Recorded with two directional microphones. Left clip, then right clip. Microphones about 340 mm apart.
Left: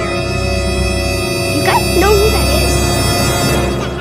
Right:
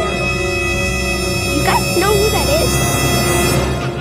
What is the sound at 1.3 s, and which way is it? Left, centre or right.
Music, centre.